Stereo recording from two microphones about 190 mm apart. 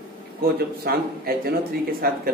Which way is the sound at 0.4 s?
55° right (ahead or behind).